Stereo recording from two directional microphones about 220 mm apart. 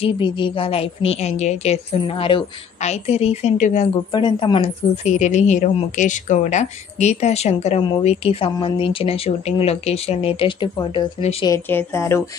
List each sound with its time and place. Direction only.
0.0 s a woman's voice: 25° left (ahead or behind)
4.1 s a woman's voice: 20° left (ahead or behind)
11.4 s speech: 10° left (ahead or behind)